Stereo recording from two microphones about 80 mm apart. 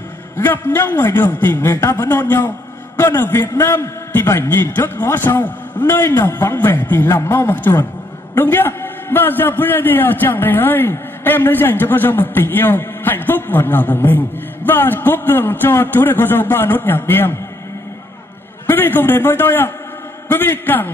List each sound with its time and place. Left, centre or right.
0.4 s a man's voice: left
18.7 s a man's voice: left